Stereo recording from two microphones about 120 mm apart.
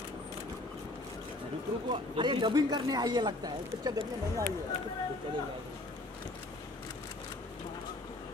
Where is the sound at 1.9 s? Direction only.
40° right (ahead or behind).